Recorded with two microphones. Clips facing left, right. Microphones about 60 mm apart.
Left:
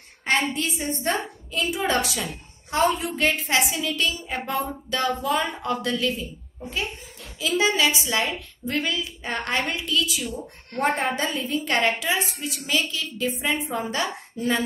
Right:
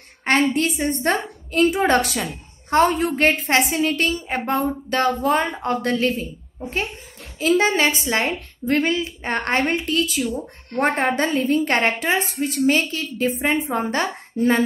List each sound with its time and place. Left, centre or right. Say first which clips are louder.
0.2 s a woman's voice: right 5 dB; right
7.3 s a woman's voice: right 4 dB; right